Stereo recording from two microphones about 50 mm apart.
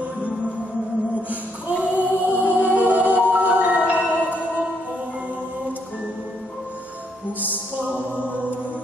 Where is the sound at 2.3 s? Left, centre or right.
Right.